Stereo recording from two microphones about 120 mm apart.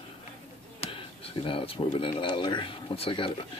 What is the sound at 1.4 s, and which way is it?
Speech, 45° left (ahead or behind).